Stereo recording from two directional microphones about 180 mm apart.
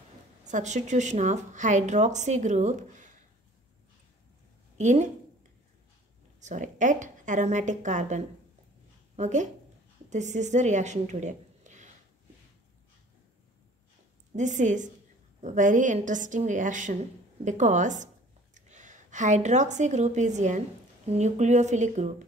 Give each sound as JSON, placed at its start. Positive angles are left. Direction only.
{"t": 0.5, "sound": "speech", "side_deg": -40}
{"t": 4.7, "sound": "speech", "side_deg": -40}
{"t": 6.4, "sound": "a woman's voice", "side_deg": -45}
{"t": 14.3, "sound": "a woman's voice", "side_deg": -45}